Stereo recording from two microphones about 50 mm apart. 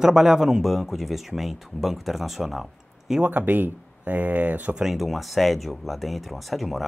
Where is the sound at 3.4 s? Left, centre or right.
Right.